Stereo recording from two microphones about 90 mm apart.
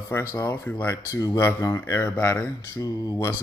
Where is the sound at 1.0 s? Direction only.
35° left (ahead or behind); by 2.5 s 20° left (ahead or behind).